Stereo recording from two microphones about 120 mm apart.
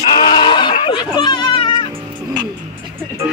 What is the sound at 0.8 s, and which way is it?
Speech, 40° left (ahead or behind).